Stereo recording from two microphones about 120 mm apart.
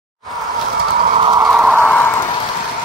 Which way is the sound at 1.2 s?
30° right (ahead or behind).